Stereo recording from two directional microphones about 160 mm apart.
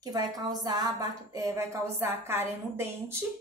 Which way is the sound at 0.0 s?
25° right (ahead or behind).